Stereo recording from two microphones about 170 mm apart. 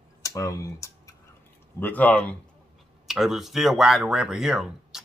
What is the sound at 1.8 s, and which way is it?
Speech, 10° left (ahead or behind).